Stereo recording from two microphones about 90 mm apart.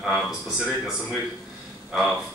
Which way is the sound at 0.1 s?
10° right (ahead or behind).